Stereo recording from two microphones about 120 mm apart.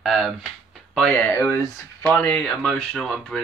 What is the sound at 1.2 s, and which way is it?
Speech, 15° left (ahead or behind).